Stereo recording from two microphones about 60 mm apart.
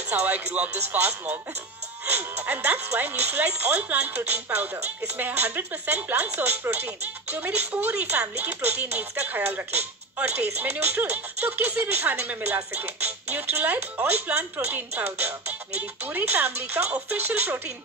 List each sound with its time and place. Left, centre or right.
0.1 s speech: right
2.4 s speech: right
8.9 s speech: right